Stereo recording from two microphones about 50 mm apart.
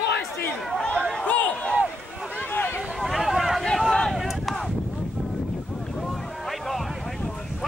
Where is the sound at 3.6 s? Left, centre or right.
Centre.